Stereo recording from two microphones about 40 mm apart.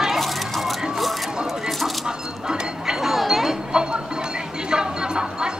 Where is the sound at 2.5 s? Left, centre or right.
Centre.